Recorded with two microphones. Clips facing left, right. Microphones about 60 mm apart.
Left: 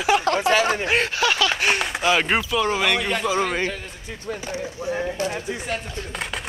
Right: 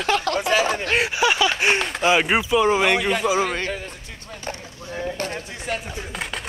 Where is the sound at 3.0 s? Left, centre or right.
Centre.